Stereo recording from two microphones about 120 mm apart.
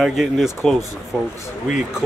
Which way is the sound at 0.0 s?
Centre (ahead or behind).